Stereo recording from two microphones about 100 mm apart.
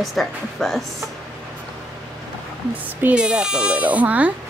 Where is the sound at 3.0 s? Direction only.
15° right (ahead or behind).